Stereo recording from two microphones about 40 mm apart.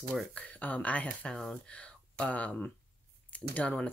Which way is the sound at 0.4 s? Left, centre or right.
Left.